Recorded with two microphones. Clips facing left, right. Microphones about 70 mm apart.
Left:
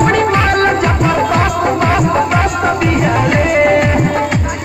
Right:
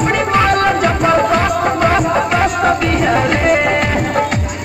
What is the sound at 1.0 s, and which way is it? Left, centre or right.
Music, centre.